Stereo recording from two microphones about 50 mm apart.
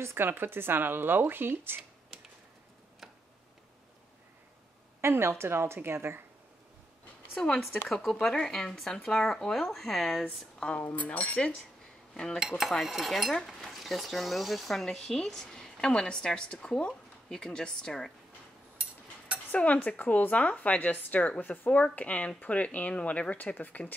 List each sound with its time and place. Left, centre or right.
0.0 s speech: right
5.0 s a woman's voice: right
7.9 s speech: centre
10.6 s speech: centre
11.0 s speech: left
12.1 s cutlery: centre
12.4 s cutlery: centre
12.8 s speech: centre
18.8 s a sound: right
19.5 s speech: left